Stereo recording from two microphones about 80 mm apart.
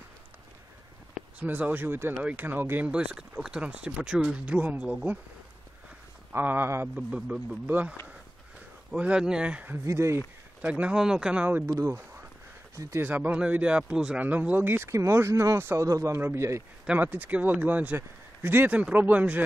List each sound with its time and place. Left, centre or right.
1.4 s speech: right
2.9 s speech: centre
6.3 s speech: right
7.0 s speech: centre
7.6 s speech: right
8.9 s speech: centre
9.8 s a man's voice: right
10.6 s speech: centre
11.6 s a man's voice: right
14.9 s a man's voice: right
17.0 s speech: right